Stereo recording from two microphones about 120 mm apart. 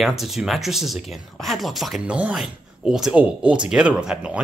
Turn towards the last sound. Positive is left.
turn(degrees=-5)  # may be behind; listen again after turning